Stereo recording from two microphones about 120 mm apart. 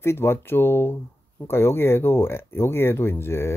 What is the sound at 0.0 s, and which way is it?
Speech, 20° left (ahead or behind).